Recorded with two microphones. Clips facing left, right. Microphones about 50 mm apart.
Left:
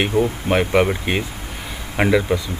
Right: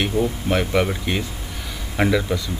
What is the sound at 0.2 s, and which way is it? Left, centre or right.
Speech, left.